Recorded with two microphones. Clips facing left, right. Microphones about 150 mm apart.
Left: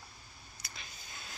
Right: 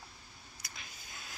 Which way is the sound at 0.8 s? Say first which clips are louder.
Left 1 dB; 10° right (ahead or behind).